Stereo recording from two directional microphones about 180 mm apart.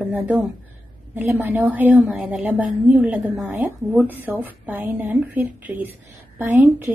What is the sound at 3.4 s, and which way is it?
Speech, 15° right (ahead or behind).